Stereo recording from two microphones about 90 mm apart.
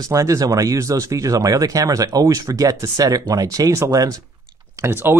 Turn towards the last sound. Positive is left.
turn(degrees=-25)  # may be behind; listen again after turning